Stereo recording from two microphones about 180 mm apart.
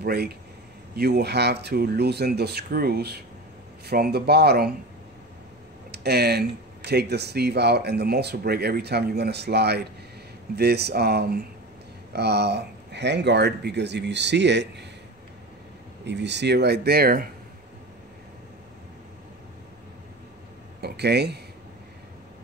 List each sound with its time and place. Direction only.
0.0 s speech: 60° right (ahead or behind)
5.9 s speech: 65° right (ahead or behind)
16.1 s speech: 75° right (ahead or behind); by 17.3 s 55° right (ahead or behind)
20.8 s speech: 65° right (ahead or behind)